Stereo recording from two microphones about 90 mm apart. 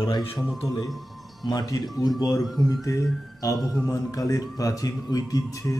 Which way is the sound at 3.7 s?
40° left (ahead or behind).